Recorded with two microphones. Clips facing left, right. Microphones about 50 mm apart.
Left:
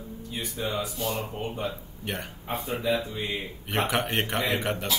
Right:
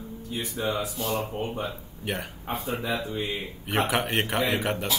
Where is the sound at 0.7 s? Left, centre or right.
Centre.